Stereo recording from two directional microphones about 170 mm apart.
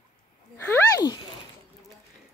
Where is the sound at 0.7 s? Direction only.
20° left (ahead or behind).